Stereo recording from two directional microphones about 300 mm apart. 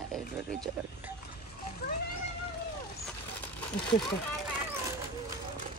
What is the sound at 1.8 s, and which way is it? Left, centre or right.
Cat, left.